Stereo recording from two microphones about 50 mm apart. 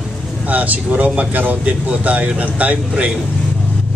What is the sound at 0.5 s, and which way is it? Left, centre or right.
Speech, right.